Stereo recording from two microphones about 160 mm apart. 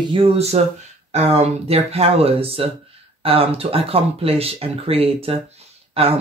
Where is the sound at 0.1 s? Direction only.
40° right (ahead or behind).